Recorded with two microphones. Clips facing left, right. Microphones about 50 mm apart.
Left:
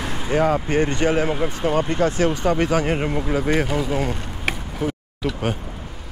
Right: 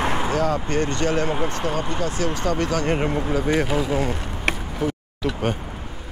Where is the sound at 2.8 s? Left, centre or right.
Centre.